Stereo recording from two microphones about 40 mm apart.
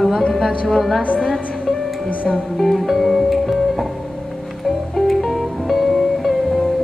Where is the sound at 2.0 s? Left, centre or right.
Left.